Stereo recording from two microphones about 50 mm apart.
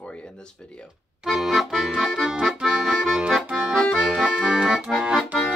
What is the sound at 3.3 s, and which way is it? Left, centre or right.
Accordion, centre.